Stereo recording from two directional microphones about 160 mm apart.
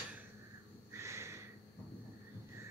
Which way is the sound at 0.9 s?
15° right (ahead or behind).